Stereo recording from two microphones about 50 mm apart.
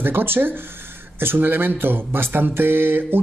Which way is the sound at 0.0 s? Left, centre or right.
Right.